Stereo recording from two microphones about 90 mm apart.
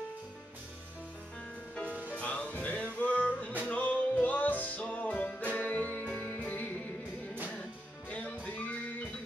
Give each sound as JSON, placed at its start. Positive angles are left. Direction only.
{"t": 2.0, "sound": "music", "side_deg": 15}
{"t": 8.1, "sound": "music", "side_deg": 15}